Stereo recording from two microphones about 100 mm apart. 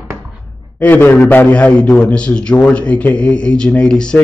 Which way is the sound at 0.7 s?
15° left (ahead or behind).